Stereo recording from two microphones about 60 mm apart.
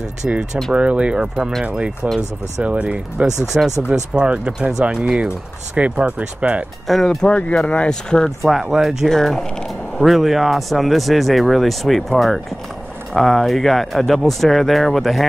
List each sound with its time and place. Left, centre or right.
0.7 s speech: centre
6.9 s speech: centre
7.2 s speech: left
7.9 s speech: centre
8.5 s speech: centre
13.1 s speech: centre